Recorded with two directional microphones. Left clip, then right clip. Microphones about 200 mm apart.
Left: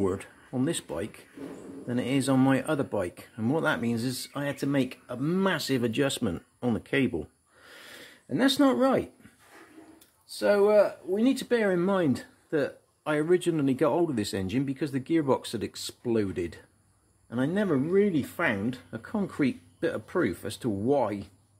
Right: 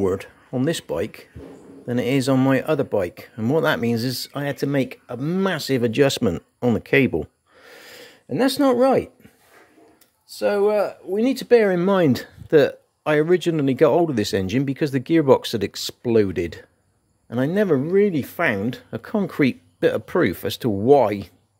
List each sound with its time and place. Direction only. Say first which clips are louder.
0.0 s speech: right 7 dB; 40° right (ahead or behind)
10.2 s speech: right 3 dB; 45° right (ahead or behind)